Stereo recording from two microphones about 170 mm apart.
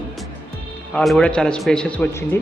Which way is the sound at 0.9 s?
5° left (ahead or behind).